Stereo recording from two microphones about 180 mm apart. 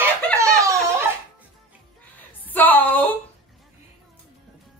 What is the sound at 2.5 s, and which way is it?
Speech, 10° left (ahead or behind).